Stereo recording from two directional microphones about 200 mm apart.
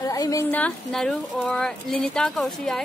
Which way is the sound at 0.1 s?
15° left (ahead or behind).